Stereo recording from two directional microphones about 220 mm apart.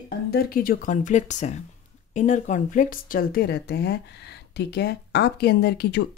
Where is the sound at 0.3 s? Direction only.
45° left (ahead or behind).